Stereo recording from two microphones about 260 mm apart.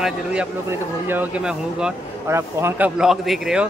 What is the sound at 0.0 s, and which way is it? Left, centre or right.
Speech, centre.